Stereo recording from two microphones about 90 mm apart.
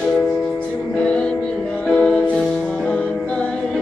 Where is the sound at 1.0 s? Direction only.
10° left (ahead or behind).